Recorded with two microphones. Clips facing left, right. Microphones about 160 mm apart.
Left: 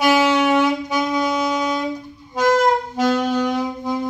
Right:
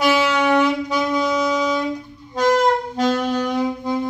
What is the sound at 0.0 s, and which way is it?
Saxophone, 45° left (ahead or behind).